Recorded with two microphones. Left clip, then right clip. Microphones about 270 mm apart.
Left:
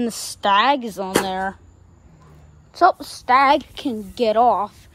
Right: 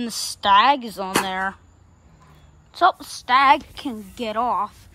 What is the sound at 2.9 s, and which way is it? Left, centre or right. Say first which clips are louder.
A woman's voice: left 2 dB; centre.